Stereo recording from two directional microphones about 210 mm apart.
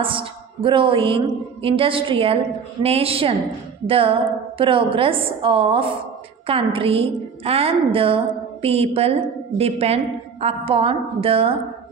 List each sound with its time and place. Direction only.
0.0 s a woman's voice: 25° right (ahead or behind)